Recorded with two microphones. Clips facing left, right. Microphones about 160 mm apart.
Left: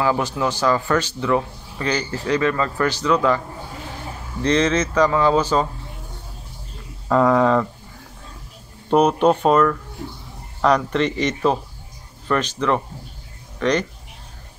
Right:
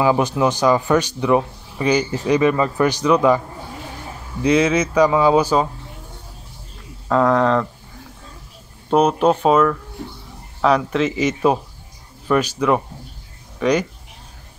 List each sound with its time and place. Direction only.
0.0 s a man's voice: 20° right (ahead or behind)
7.1 s speech: centre (ahead or behind)
8.9 s a man's voice: centre (ahead or behind)